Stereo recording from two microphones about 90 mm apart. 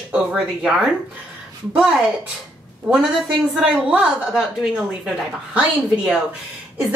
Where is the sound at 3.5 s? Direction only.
10° right (ahead or behind).